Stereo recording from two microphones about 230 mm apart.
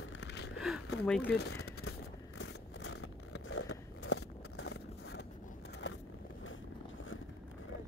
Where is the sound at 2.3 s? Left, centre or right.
Left.